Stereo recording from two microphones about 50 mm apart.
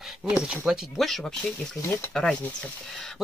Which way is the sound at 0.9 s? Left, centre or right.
Centre.